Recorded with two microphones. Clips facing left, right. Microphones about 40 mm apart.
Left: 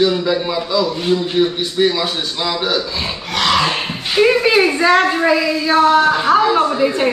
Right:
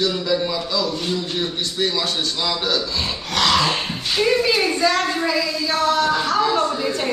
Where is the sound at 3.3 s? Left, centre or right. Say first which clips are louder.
Left 3 dB; centre.